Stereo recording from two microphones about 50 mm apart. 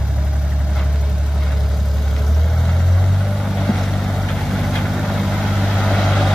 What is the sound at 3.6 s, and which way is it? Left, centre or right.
Vehicle, centre.